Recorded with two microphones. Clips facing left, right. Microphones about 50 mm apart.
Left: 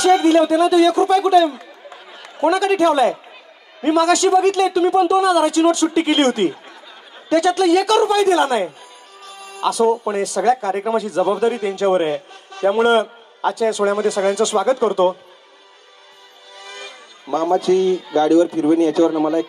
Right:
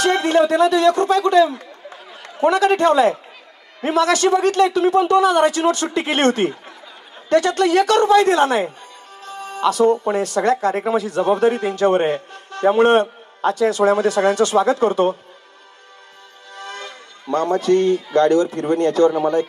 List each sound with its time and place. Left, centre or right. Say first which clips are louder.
0.0 s speech: left 3 dB; right
9.2 s music: right 2 dB; right
10.0 s speech: even; right
16.5 s speech: right 3 dB; right